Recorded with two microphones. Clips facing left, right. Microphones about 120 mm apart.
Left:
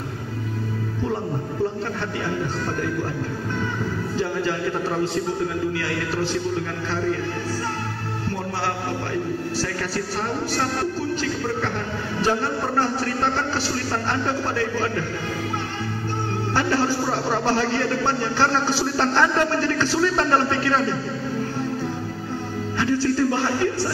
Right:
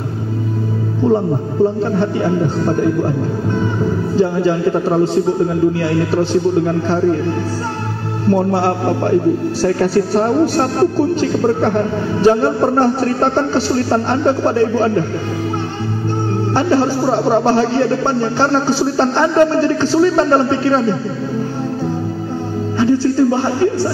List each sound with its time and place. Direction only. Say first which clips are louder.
1.0 s a man's voice: right 12 dB; 30° right (ahead or behind)
8.6 s a man's voice: right 11 dB; 35° right (ahead or behind)
16.5 s speech: right 7 dB; 25° right (ahead or behind)
22.8 s speech: right 8 dB; 20° right (ahead or behind)